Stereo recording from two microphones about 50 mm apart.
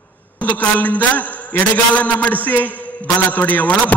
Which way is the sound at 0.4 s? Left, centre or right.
Left.